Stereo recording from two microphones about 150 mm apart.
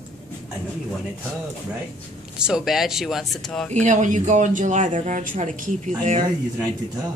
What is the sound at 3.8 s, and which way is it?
Speech, 55° right (ahead or behind).